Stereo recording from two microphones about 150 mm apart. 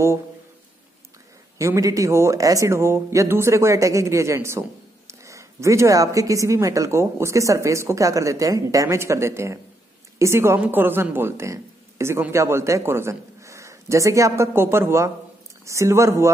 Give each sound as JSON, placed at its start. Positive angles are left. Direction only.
{"t": 1.6, "sound": "a woman's voice", "side_deg": -20}